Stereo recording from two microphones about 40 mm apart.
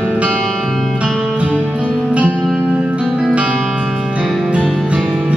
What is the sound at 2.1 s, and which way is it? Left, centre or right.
Music, right.